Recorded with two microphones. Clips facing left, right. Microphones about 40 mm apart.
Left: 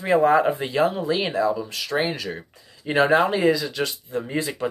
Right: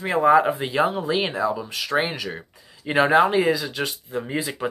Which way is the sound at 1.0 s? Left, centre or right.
Centre.